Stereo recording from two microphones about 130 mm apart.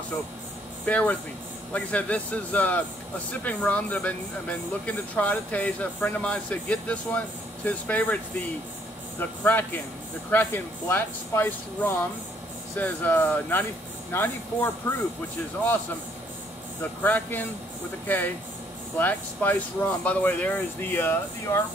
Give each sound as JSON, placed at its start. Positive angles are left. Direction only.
{"t": 0.8, "sound": "speech", "side_deg": 10}
{"t": 9.2, "sound": "speech", "side_deg": 15}
{"t": 17.0, "sound": "speech", "side_deg": 15}